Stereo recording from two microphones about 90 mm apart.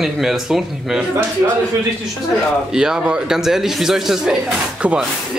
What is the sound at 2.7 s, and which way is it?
A man's voice, 5° right (ahead or behind).